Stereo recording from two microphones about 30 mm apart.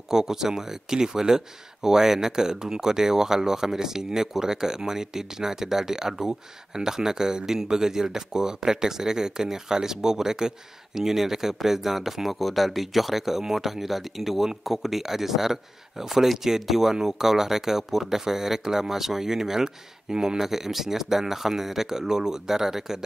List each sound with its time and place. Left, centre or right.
0.1 s speech: centre